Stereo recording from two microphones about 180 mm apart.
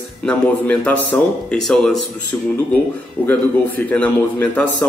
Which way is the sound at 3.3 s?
10° left (ahead or behind).